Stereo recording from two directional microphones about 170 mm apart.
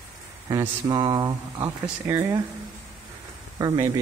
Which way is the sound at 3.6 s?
20° right (ahead or behind).